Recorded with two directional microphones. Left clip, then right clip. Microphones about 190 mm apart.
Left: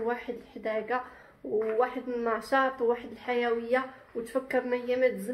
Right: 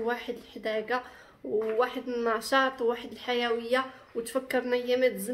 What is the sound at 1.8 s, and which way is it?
Speech, 25° right (ahead or behind).